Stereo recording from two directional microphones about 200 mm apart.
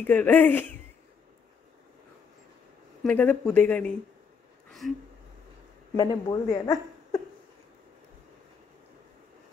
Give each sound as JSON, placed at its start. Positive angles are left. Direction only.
{"t": 0.0, "sound": "speech", "side_deg": 10}
{"t": 3.0, "sound": "speech", "side_deg": 5}
{"t": 4.8, "sound": "a sound", "side_deg": 0}
{"t": 5.9, "sound": "a woman's voice", "side_deg": 15}